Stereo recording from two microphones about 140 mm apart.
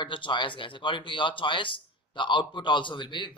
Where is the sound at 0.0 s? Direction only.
35° left (ahead or behind).